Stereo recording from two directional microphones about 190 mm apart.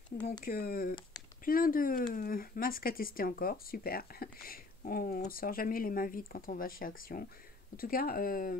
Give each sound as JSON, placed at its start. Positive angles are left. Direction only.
{"t": 0.4, "sound": "speech", "side_deg": 50}